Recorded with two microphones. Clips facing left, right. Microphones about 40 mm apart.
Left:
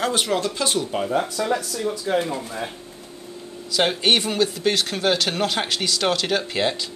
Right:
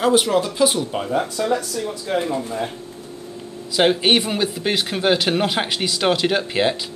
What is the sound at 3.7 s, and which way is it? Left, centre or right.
Speech, centre.